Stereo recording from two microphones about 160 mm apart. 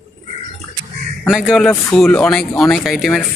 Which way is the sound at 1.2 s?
5° right (ahead or behind).